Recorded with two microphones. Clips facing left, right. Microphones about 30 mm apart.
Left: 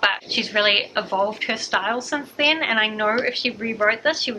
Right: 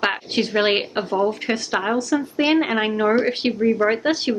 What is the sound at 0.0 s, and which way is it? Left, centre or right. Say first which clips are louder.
A woman's voice: even; centre.